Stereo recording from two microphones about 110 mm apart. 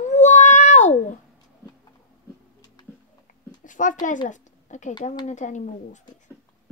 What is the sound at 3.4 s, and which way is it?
Speech, 40° left (ahead or behind).